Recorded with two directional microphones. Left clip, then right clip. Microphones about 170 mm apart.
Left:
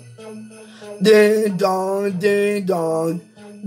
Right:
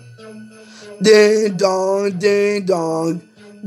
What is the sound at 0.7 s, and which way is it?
Music, 15° right (ahead or behind).